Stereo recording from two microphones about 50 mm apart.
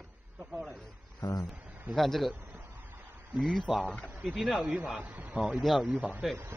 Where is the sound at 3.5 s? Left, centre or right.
Centre.